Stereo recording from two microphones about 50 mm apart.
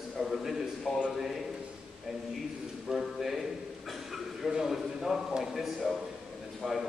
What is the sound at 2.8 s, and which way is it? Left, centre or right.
Speech, centre.